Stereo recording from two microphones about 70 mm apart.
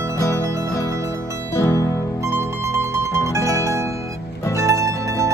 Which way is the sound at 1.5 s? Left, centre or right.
Left.